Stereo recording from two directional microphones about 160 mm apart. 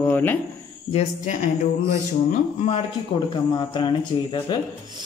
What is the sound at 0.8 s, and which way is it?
Speech, 45° left (ahead or behind).